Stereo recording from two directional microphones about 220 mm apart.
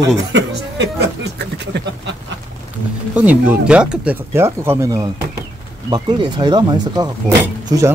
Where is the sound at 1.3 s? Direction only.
50° right (ahead or behind).